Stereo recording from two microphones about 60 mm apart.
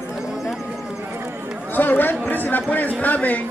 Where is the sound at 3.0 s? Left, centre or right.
Left.